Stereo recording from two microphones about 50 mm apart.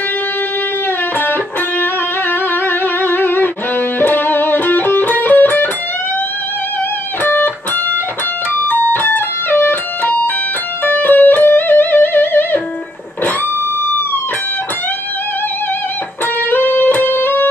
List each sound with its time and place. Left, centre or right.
1.2 s music: left
7.2 s music: left
8.5 s music: left
10.0 s music: left
10.8 s music: left
16.4 s music: left